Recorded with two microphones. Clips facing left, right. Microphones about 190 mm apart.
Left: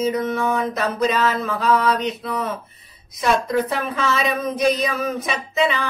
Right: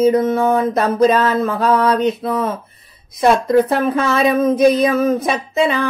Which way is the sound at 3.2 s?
55° right (ahead or behind).